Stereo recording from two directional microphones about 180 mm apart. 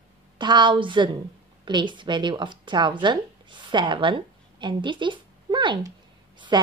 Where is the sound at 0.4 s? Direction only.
25° right (ahead or behind).